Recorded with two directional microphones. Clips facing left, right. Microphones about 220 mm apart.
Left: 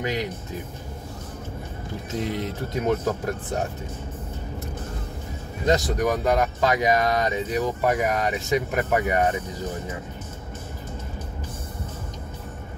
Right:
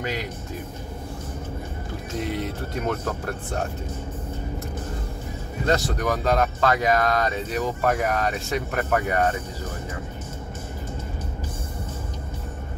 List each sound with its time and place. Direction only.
0.0 s speech: 15° left (ahead or behind)
2.7 s speech: 15° left (ahead or behind)
5.7 s speech: 15° left (ahead or behind)